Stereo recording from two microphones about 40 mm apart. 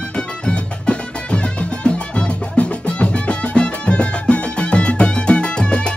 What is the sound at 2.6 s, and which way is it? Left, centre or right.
Music, left.